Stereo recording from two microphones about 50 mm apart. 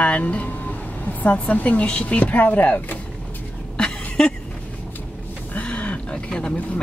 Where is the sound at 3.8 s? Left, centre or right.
Centre.